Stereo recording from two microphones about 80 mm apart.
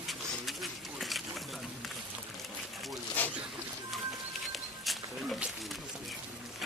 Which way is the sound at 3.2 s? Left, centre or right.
Left.